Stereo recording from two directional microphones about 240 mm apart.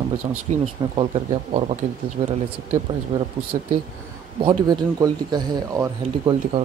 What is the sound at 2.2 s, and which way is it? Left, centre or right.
Speech, right.